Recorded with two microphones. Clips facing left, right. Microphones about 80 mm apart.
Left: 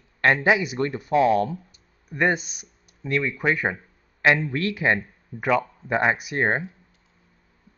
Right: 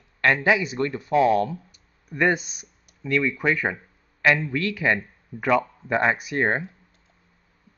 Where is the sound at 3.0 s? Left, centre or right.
Left.